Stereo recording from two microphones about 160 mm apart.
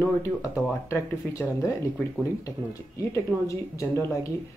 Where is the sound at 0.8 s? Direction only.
20° left (ahead or behind).